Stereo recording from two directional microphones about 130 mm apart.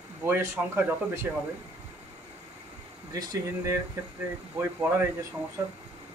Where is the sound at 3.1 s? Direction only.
30° right (ahead or behind).